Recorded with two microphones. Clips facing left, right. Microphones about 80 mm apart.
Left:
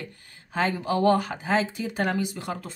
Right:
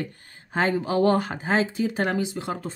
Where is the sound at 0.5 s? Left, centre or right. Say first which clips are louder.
Right 2 dB; right.